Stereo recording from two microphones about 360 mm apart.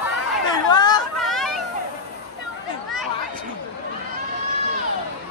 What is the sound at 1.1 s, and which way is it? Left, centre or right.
Hubbub, centre.